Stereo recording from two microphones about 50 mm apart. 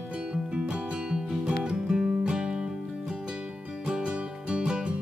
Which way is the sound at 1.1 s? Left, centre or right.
Centre.